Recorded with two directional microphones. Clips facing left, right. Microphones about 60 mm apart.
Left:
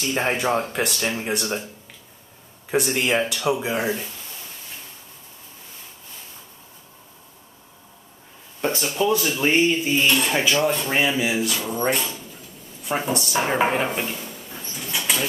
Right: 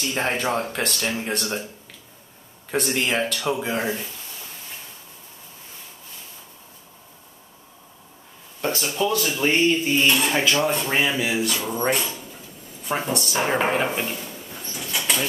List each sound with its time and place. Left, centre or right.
0.0 s speech: centre
2.7 s speech: centre
8.5 s speech: left; by 10.9 s centre
10.9 s speech: centre
12.8 s speech: centre